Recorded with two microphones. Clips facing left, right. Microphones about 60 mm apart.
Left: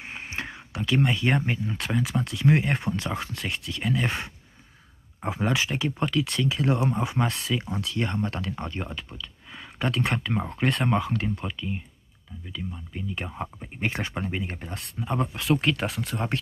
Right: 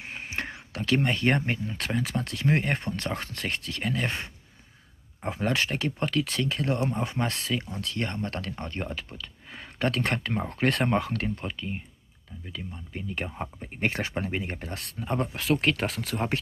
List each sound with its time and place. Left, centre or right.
0.0 s a sound: centre
0.7 s speech: centre
1.0 s speech: centre
5.2 s speech: centre
6.7 s speech: centre
11.4 s speech: centre
12.7 s speech: centre